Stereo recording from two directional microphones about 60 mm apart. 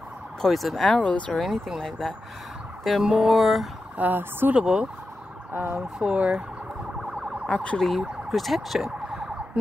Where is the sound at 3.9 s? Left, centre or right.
Right.